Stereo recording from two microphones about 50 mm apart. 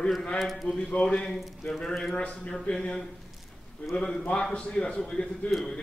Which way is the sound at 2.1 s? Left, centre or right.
Left.